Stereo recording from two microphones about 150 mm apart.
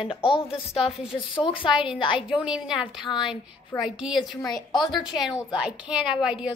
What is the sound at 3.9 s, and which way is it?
A woman's voice, 5° right (ahead or behind).